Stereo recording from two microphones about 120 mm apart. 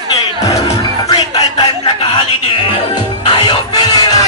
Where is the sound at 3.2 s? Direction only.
40° left (ahead or behind).